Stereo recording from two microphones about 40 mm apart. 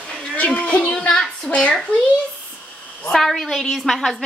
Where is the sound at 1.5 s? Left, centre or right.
Left.